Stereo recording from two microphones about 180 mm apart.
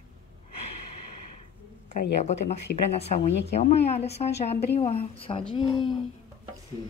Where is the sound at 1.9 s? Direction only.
40° left (ahead or behind).